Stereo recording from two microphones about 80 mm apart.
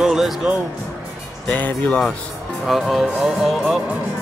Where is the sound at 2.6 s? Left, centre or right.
Centre.